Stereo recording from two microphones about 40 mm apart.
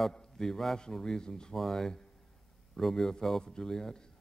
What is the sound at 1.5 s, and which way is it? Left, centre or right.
Speech, centre.